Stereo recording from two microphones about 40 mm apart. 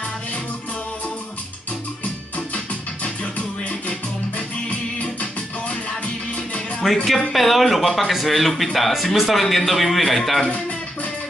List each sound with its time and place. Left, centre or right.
2.3 s music: left
6.8 s a man's voice: centre